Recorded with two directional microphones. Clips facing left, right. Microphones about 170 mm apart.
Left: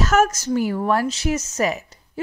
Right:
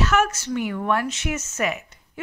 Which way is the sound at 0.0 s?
40° left (ahead or behind).